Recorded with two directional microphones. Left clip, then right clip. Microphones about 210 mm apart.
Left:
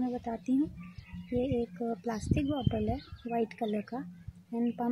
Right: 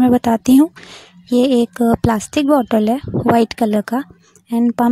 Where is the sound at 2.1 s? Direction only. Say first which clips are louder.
Right 19 dB; 40° right (ahead or behind).